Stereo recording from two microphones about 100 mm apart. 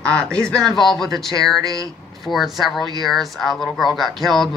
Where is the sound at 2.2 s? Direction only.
Centre (ahead or behind).